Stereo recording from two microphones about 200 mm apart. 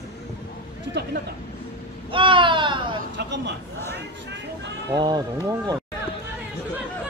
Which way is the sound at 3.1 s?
60° right (ahead or behind).